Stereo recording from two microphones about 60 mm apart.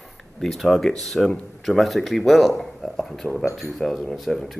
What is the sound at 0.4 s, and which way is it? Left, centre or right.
Speech, centre.